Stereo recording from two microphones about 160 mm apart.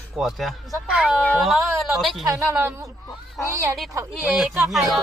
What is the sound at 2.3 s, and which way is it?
A woman's voice, 15° right (ahead or behind).